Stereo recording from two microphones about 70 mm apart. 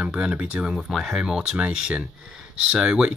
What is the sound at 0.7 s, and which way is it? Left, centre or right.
Speech, centre.